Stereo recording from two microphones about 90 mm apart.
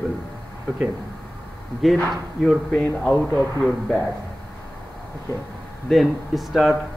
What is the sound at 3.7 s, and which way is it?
Speech, 5° left (ahead or behind).